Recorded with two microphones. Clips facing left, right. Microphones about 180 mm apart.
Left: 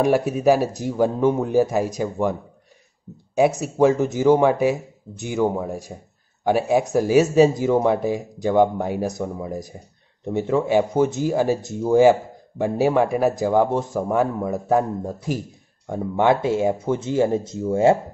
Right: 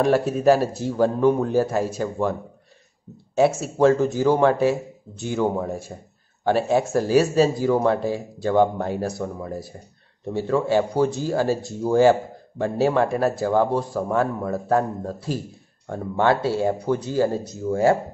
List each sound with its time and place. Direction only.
0.0 s speech: 15° left (ahead or behind)
3.3 s speech: 15° left (ahead or behind)